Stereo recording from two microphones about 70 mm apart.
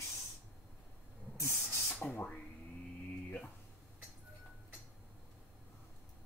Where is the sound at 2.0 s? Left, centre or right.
Centre.